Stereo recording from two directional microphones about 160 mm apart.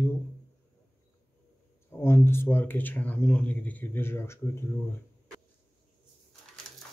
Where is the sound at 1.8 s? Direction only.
15° left (ahead or behind).